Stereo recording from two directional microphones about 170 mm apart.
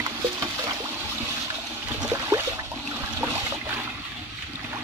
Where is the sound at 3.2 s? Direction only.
15° right (ahead or behind).